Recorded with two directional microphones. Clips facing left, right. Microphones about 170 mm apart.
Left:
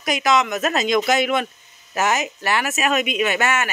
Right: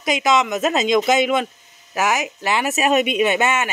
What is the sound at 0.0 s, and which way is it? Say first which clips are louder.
Speech: right 1 dB; 20° right (ahead or behind).